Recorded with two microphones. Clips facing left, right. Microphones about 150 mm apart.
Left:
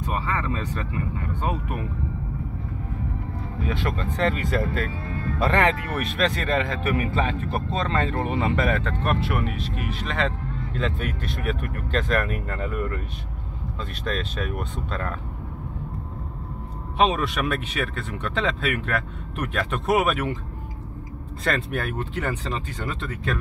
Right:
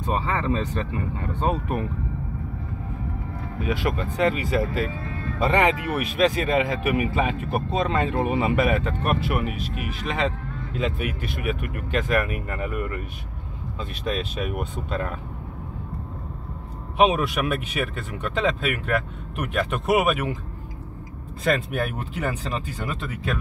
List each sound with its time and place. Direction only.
0.0 s speech: 25° right (ahead or behind)
3.6 s speech: 10° right (ahead or behind)
14.0 s speech: 5° right (ahead or behind)
16.9 s speech: 10° right (ahead or behind)
21.5 s speech: 10° right (ahead or behind)